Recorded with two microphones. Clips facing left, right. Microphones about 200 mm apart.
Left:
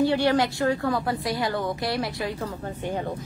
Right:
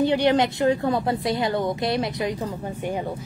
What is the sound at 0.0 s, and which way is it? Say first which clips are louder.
A woman's voice: right 2 dB; 20° right (ahead or behind).